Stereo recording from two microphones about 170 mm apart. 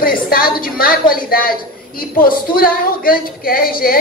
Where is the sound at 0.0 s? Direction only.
60° left (ahead or behind).